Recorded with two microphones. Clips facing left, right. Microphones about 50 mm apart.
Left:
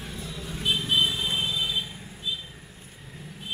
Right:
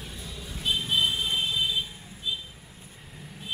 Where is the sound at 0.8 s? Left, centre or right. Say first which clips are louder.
Left 1 dB; left.